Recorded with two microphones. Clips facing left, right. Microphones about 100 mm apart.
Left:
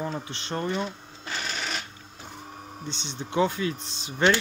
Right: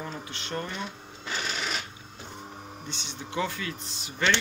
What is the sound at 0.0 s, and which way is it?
Speech, 30° left (ahead or behind).